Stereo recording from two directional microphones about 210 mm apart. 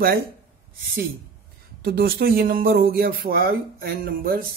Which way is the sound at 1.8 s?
45° right (ahead or behind).